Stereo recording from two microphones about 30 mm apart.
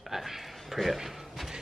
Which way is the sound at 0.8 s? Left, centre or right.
Centre.